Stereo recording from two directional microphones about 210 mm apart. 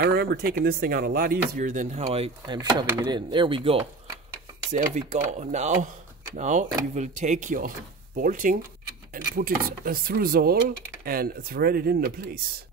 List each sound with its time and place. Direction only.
0.0 s speech: 50° right (ahead or behind); by 3.8 s 25° right (ahead or behind)
4.7 s speech: 35° right (ahead or behind)